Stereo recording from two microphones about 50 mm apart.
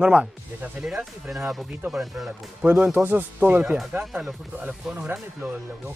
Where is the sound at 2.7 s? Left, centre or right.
Right.